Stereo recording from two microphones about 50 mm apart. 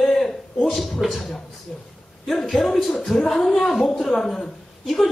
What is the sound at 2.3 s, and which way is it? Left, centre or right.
A woman's voice, centre.